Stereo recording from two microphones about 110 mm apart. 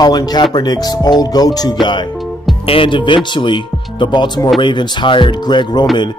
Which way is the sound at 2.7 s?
50° left (ahead or behind).